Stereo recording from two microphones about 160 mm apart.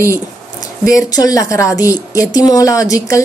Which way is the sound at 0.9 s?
20° left (ahead or behind).